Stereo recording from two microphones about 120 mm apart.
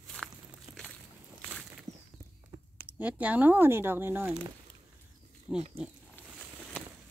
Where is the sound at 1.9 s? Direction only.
25° right (ahead or behind).